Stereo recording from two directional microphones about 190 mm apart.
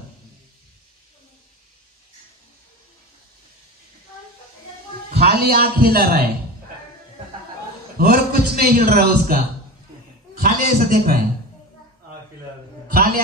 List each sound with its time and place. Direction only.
5.1 s a man's voice: 55° right (ahead or behind)
8.0 s a man's voice: 55° right (ahead or behind)
10.4 s a man's voice: 50° right (ahead or behind)
12.8 s a sound: 50° right (ahead or behind)